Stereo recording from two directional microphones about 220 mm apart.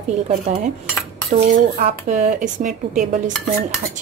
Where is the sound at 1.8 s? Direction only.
35° right (ahead or behind).